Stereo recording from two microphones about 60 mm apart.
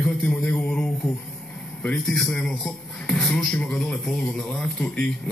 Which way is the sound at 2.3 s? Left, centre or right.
Centre.